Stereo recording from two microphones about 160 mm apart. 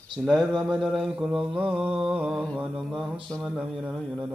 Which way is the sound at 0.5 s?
25° right (ahead or behind).